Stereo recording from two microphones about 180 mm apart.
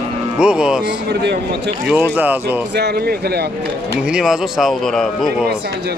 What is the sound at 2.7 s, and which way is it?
Speech, 65° right (ahead or behind).